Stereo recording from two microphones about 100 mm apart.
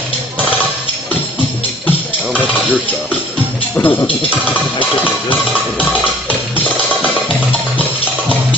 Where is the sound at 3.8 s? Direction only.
25° left (ahead or behind).